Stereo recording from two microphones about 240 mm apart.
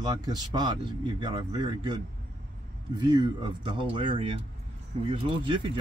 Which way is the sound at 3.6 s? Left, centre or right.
Right.